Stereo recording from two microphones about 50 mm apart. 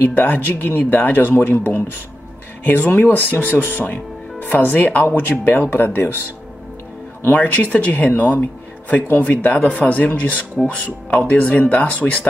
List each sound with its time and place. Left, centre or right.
0.1 s speech: left
7.2 s a man's voice: left